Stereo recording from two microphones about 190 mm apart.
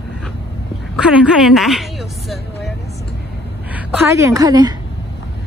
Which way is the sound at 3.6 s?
10° right (ahead or behind).